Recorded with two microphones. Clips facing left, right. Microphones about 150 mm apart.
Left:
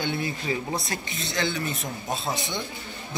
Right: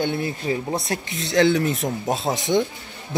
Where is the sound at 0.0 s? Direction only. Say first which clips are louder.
Right 5 dB; 50° right (ahead or behind).